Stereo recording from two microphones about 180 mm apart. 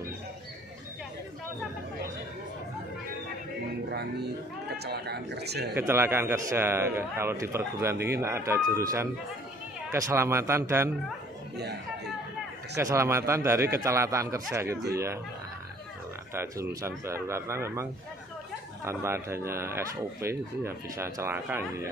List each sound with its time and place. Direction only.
4.6 s a man's voice: 65° right (ahead or behind)
5.8 s speech: 10° right (ahead or behind)
12.7 s speech: 15° right (ahead or behind)
16.3 s speech: 15° right (ahead or behind)
18.9 s speech: 15° right (ahead or behind)